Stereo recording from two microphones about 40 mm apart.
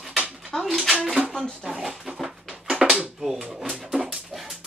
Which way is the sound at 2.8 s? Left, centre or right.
Right.